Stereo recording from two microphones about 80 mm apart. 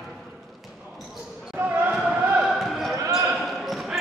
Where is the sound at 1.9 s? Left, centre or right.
Centre.